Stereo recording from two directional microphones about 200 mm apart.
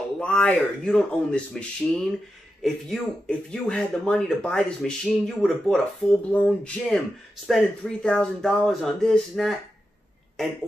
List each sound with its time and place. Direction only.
0.2 s speech: 5° left (ahead or behind)